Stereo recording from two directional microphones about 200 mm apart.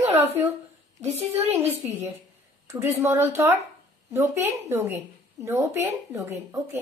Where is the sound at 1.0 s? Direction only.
35° right (ahead or behind).